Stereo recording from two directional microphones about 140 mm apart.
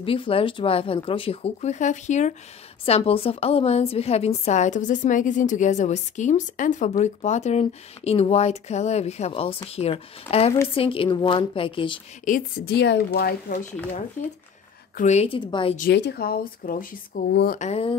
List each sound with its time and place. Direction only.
0.0 s speech: 40° left (ahead or behind); by 2.3 s 60° left (ahead or behind)
2.8 s a woman's voice: 45° left (ahead or behind)
12.3 s speech: 85° left
15.0 s a woman's voice: 55° left (ahead or behind)
15.2 s speech: 35° left (ahead or behind)
15.7 s speech: 80° left
17.6 s a woman's voice: 45° left (ahead or behind)